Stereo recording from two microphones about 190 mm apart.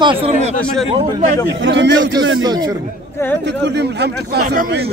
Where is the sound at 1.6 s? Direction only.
70° right (ahead or behind).